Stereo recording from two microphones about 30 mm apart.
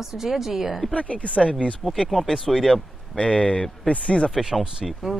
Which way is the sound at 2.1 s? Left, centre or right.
Centre.